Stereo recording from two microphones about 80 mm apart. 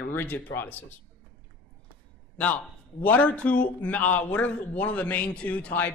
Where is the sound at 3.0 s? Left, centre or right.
Centre.